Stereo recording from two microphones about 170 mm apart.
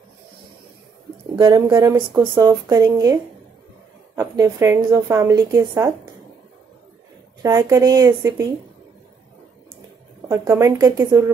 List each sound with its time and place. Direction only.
1.4 s a woman's voice: 20° right (ahead or behind)
7.4 s speech: 20° right (ahead or behind)
10.2 s speech: 15° right (ahead or behind)